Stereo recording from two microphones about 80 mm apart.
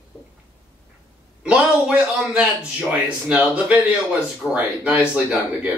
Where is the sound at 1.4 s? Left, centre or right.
Centre.